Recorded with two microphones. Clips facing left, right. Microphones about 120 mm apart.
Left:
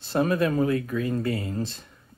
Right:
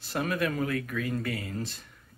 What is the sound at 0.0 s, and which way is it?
Speech, 30° left (ahead or behind).